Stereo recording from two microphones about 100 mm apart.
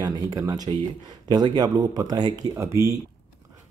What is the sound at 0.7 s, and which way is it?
Speech, 60° right (ahead or behind).